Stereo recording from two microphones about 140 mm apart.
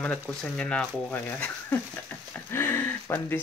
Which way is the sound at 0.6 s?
5° left (ahead or behind).